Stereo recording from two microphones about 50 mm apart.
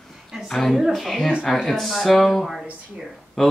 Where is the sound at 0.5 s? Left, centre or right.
Centre.